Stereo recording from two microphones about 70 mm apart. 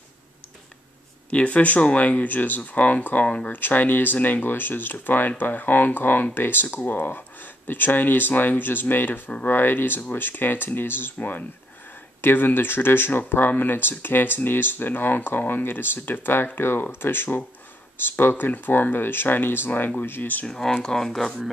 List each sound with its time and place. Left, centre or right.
1.3 s speech: left
20.4 s speech: centre